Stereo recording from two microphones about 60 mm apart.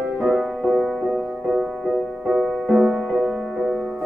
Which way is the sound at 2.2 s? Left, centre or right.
Centre.